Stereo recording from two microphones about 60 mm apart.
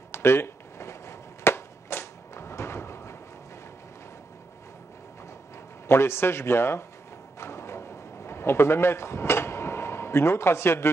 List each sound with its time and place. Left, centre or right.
0.1 s chop: left
5.9 s a man's voice: left
7.3 s a sound: left